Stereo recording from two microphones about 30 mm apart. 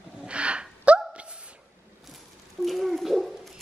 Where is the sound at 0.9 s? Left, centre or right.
Right.